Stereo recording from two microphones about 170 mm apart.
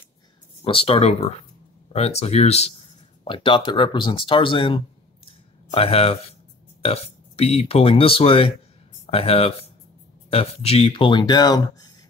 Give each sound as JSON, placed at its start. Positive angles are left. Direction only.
{"t": 0.7, "sound": "speech", "side_deg": 35}